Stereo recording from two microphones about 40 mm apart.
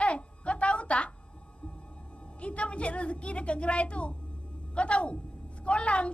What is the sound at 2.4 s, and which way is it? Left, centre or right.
A woman's voice, left.